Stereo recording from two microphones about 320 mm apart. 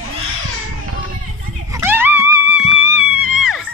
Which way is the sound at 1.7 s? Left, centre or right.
Centre.